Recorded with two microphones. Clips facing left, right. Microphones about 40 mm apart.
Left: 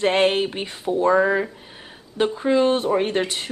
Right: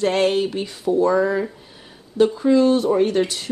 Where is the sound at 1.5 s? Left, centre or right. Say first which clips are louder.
Left 2 dB; left.